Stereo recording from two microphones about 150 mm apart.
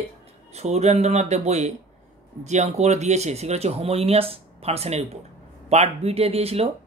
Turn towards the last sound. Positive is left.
turn(degrees=-40)  # may be behind; listen again after turning